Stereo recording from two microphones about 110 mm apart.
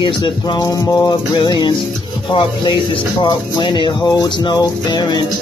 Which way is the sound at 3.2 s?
40° left (ahead or behind).